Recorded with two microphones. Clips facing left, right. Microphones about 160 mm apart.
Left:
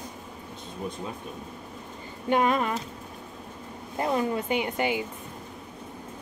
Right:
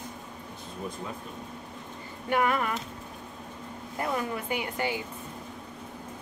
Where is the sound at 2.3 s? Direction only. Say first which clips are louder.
Left 3 dB; 20° left (ahead or behind).